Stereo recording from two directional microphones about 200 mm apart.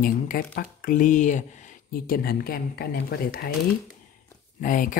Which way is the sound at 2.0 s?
50° left (ahead or behind).